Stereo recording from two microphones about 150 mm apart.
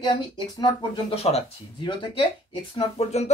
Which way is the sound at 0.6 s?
35° left (ahead or behind).